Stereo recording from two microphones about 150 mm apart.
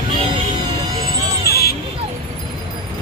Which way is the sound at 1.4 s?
90° left.